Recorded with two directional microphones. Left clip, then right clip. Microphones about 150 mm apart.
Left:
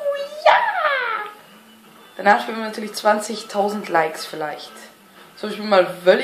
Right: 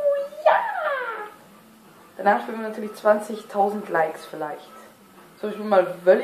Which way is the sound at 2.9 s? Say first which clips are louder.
Left 2 dB; 20° left (ahead or behind).